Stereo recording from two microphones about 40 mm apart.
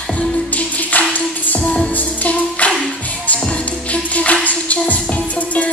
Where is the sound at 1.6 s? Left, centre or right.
Left.